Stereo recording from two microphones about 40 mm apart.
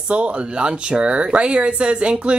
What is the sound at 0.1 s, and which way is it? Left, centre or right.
Speech, right.